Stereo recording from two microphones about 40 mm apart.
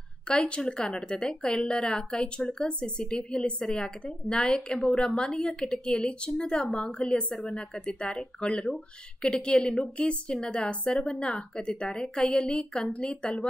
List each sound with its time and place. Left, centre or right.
0.3 s a woman's voice: left